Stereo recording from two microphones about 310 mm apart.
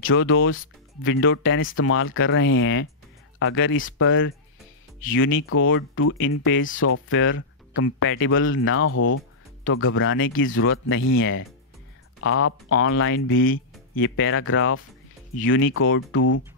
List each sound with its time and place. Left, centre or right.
0.0 s speech: left
9.7 s speech: left